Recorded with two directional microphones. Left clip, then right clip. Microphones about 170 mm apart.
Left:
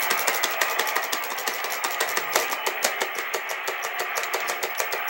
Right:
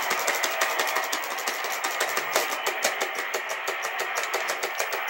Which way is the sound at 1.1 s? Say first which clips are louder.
Left 1 dB; 50° left (ahead or behind).